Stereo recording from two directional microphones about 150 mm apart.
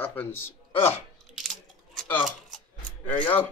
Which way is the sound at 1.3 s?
Centre (ahead or behind).